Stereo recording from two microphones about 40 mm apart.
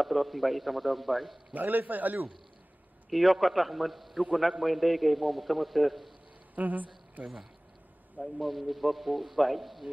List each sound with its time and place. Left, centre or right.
0.0 s a man's voice: centre
1.5 s a man's voice: right
3.1 s a man's voice: centre
6.5 s speech: right
8.4 s a man's voice: centre